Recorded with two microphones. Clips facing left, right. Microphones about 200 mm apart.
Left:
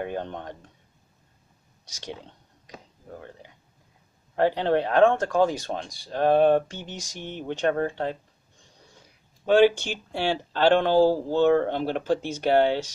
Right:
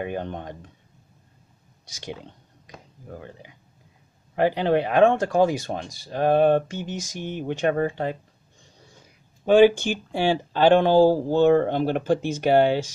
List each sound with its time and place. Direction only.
0.0 s speech: 10° right (ahead or behind)
4.4 s speech: 15° right (ahead or behind)
6.7 s mantra: 5° right (ahead or behind)
7.2 s speech: 10° right (ahead or behind)
10.1 s speech: 15° right (ahead or behind)